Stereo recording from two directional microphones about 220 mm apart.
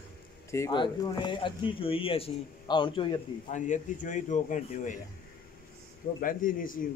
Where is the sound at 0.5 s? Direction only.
15° left (ahead or behind).